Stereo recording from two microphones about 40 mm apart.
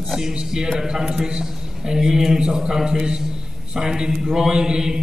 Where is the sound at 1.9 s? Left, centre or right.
Centre.